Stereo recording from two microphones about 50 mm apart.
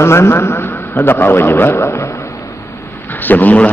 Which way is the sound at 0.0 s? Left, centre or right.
Left.